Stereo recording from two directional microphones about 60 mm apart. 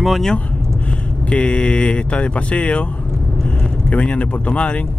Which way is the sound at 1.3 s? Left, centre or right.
Centre.